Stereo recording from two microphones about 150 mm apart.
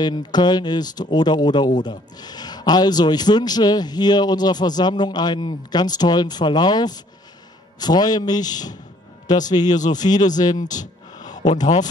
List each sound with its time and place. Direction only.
0.0 s a man's voice: 30° left (ahead or behind)
10.5 s speech: 55° left (ahead or behind)
11.1 s a sound: 25° left (ahead or behind)
11.6 s speech: 55° left (ahead or behind)